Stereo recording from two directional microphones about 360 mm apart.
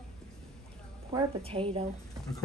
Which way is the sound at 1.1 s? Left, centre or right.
Centre.